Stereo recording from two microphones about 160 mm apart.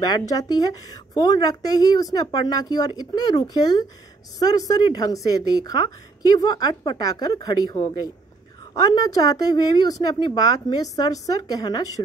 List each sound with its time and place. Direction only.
0.0 s a woman's voice: 25° left (ahead or behind)